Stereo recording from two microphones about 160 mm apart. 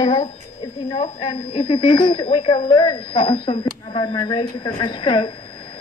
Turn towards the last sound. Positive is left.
turn(degrees=30)  # may be behind; listen again after turning